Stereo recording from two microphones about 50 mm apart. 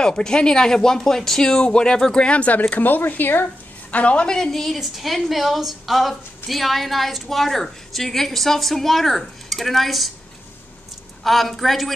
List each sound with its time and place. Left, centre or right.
0.0 s speech: centre
2.2 s a woman's voice: left
2.7 s speech: left
3.9 s a woman's voice: left
4.3 s a woman's voice: centre
11.2 s a woman's voice: centre